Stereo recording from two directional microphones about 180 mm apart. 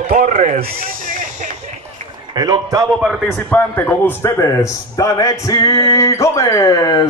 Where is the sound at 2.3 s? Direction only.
20° right (ahead or behind).